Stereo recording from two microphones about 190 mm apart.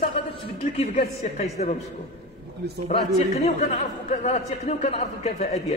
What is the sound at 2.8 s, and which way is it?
Speech, 35° left (ahead or behind).